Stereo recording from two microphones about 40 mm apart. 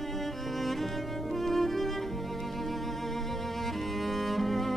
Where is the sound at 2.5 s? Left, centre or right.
Centre.